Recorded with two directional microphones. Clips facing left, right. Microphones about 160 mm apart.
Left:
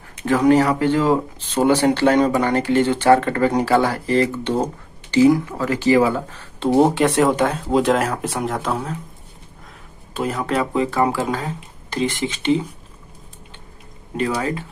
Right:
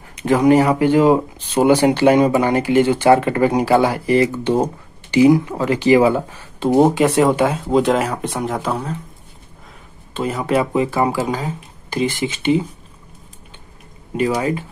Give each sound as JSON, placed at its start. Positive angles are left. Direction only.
{"t": 0.1, "sound": "speech", "side_deg": -15}
{"t": 6.6, "sound": "speech", "side_deg": 0}
{"t": 10.1, "sound": "speech", "side_deg": 0}
{"t": 14.1, "sound": "speech", "side_deg": -10}